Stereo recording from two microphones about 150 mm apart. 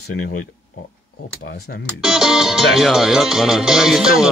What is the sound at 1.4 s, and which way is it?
Speech, 90° left.